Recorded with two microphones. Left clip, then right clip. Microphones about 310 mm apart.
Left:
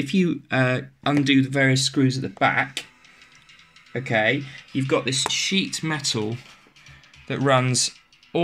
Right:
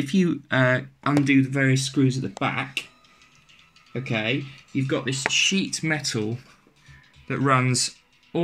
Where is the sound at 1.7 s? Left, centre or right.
Left.